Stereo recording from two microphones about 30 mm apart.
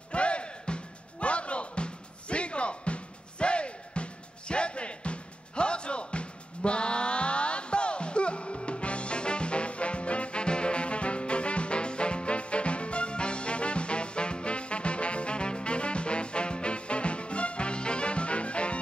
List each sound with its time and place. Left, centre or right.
0.1 s music: left